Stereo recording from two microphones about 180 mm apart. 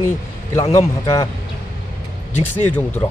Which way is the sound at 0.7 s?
20° left (ahead or behind).